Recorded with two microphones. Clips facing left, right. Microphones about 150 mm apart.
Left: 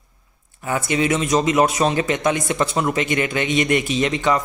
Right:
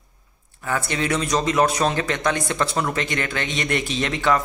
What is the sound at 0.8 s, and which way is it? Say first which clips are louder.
Speech: left 6 dB; 10° left (ahead or behind).